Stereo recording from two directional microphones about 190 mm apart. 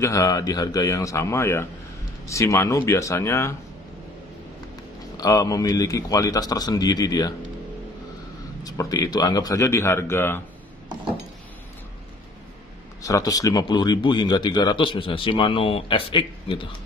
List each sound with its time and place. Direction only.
0.0 s speech: 15° left (ahead or behind)
5.1 s speech: 20° left (ahead or behind)
8.6 s speech: 20° left (ahead or behind)
13.0 s speech: 20° left (ahead or behind)